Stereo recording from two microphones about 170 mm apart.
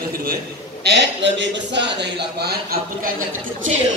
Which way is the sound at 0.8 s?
80° right.